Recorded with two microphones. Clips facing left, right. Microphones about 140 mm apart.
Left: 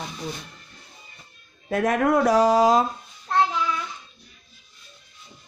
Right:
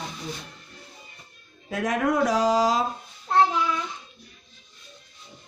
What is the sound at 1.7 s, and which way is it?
Speech, 55° left (ahead or behind).